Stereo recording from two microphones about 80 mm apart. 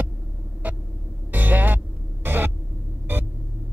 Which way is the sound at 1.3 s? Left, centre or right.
Right.